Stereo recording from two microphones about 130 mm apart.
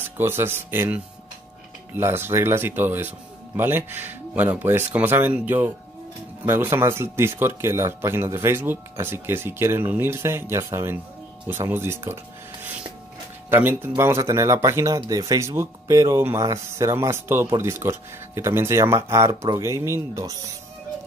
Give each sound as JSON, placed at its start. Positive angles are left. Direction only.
{"t": 0.0, "sound": "speech", "side_deg": -20}
{"t": 13.5, "sound": "speech", "side_deg": -15}